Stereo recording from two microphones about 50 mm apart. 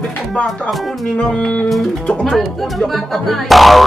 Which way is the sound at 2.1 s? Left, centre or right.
Centre.